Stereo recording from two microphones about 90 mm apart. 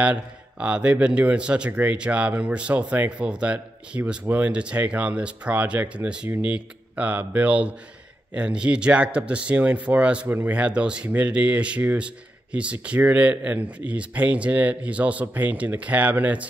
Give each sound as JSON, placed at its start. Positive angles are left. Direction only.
{"t": 0.0, "sound": "speech", "side_deg": -15}